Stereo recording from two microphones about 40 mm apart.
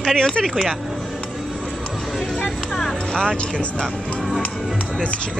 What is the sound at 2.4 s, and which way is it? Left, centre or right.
Music, centre.